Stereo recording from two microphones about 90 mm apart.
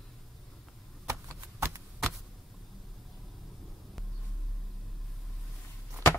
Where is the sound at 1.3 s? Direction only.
35° right (ahead or behind).